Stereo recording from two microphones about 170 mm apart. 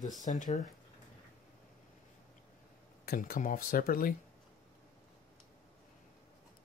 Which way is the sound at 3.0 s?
60° left (ahead or behind).